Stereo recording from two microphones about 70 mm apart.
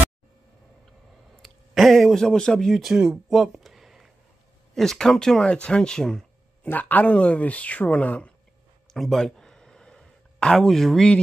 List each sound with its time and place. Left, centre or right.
1.7 s speech: centre
4.7 s speech: centre
6.6 s speech: left
8.9 s a sound: centre